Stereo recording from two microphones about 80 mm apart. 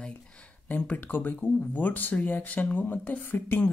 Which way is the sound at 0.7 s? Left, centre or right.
Left.